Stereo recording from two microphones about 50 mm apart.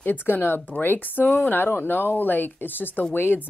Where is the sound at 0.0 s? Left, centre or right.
Left.